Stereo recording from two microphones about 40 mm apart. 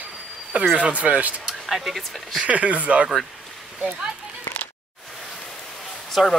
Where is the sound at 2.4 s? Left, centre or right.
Right.